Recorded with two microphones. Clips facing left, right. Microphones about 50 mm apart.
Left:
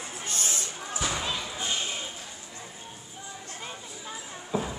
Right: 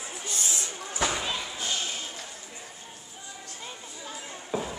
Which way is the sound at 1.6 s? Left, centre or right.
Left.